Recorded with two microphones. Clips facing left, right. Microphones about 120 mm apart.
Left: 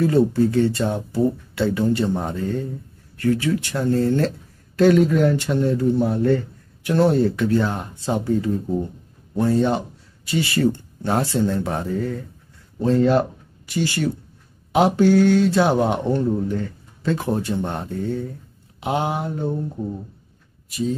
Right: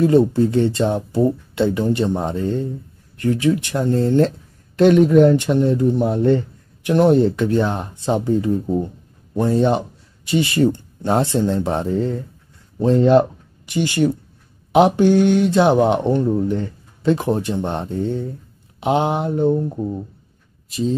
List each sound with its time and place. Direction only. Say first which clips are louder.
0.0 s speech: right 3 dB; 20° right (ahead or behind)